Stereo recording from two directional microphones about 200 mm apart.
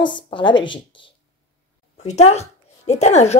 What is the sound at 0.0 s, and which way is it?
Speech, 25° left (ahead or behind).